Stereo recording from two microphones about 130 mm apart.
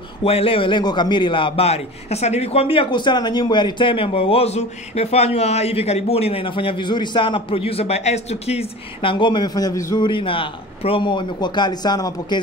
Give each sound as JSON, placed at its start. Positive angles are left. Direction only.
{"t": 0.2, "sound": "a man's voice", "side_deg": 45}
{"t": 10.0, "sound": "a man's voice", "side_deg": 40}